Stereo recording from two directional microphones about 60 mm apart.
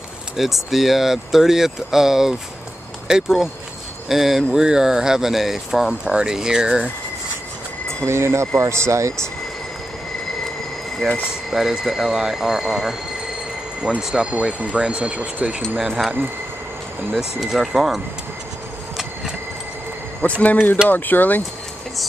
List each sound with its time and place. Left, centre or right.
0.4 s speech: centre
7.9 s speech: right
11.0 s speech: centre
17.2 s speech: centre
20.2 s speech: left